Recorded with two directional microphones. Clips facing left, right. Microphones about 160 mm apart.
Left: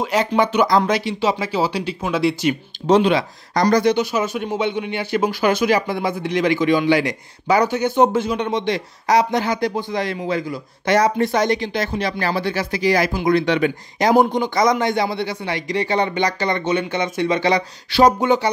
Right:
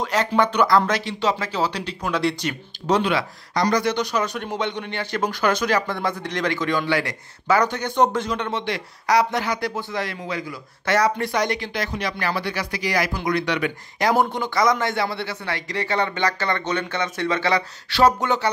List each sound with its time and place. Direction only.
0.0 s speech: 10° left (ahead or behind)
2.9 s speech: 20° left (ahead or behind)
3.5 s speech: 35° left (ahead or behind)
3.9 s speech: 5° left (ahead or behind)